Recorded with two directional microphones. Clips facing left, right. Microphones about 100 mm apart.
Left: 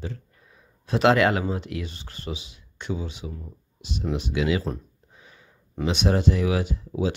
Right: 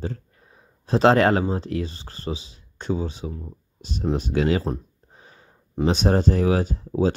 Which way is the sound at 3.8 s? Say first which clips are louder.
Right 4 dB; 45° right (ahead or behind).